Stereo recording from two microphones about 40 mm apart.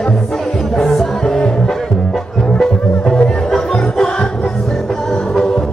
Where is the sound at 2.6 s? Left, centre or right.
Centre.